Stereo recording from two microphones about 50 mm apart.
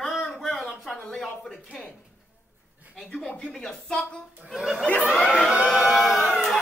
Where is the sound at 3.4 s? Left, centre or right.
Centre.